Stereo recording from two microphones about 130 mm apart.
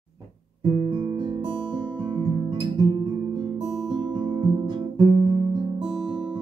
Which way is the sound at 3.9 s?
35° right (ahead or behind).